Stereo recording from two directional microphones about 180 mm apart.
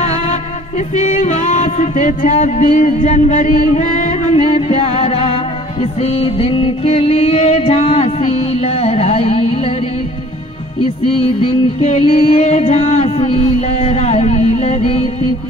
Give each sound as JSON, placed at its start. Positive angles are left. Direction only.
{"t": 0.0, "sound": "music", "side_deg": 40}
{"t": 11.4, "sound": "music", "side_deg": 35}